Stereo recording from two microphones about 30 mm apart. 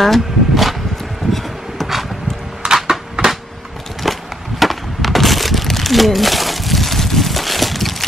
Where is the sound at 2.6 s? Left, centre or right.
Right.